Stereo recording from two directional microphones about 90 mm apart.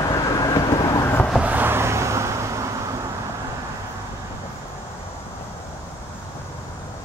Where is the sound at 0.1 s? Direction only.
40° left (ahead or behind).